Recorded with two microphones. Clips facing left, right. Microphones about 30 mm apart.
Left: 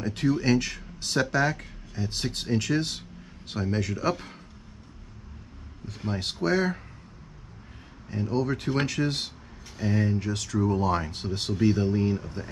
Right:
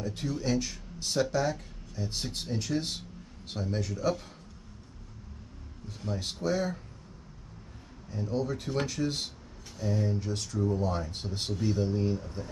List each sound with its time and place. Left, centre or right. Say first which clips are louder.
0.0 s a sound: left 7 dB; left
0.4 s speech: left 6 dB; left
6.0 s speech: left 4 dB; left
8.1 s speech: left 4 dB; left
9.8 s speech: left 4 dB; left
11.6 s speech: left 6 dB; left